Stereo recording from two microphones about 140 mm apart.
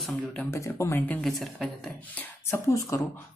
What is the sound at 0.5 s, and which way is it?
Speech, 20° left (ahead or behind).